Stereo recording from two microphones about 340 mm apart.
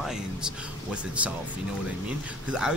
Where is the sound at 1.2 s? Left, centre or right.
Centre.